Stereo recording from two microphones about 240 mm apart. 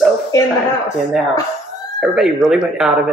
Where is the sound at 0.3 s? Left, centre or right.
Centre.